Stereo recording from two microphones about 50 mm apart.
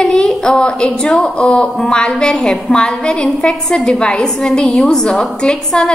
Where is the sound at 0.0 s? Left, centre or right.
Centre.